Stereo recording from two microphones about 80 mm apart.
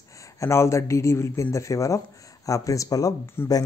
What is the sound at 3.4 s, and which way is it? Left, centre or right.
Speech, left.